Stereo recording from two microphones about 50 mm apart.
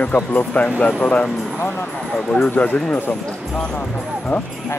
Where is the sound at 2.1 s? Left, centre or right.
Centre.